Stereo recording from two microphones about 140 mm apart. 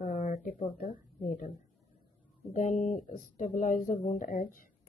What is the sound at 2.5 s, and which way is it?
A woman's voice, 65° left (ahead or behind).